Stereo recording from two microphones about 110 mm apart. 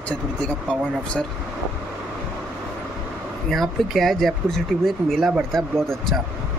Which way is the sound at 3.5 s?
Centre (ahead or behind).